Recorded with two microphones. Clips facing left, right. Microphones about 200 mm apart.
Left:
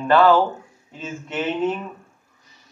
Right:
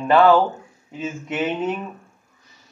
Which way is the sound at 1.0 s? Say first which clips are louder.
Right 3 dB; 15° right (ahead or behind).